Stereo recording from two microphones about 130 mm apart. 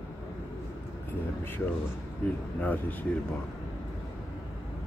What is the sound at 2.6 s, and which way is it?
Speech, 15° left (ahead or behind).